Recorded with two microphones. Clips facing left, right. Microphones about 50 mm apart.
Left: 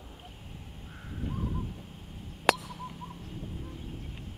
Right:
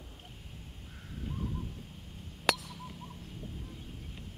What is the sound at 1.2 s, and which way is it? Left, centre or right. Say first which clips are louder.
Bird: left 4 dB; centre.